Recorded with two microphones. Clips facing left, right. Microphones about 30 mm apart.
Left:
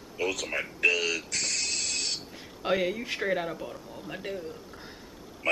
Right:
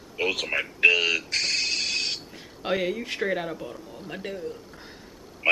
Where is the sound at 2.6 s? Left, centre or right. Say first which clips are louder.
Right 1 dB; centre.